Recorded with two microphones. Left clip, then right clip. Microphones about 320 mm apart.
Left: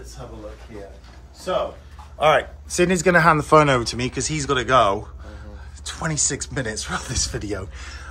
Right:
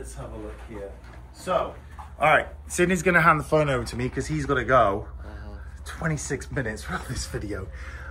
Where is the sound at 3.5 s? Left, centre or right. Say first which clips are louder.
Left 8 dB; centre.